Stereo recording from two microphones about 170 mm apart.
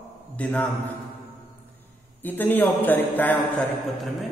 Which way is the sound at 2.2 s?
10° left (ahead or behind).